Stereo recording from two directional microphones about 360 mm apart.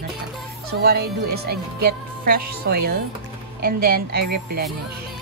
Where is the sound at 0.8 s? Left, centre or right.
Right.